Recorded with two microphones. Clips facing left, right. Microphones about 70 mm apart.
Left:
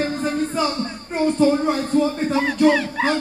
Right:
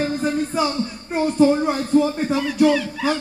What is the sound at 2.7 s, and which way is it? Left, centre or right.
Music, left.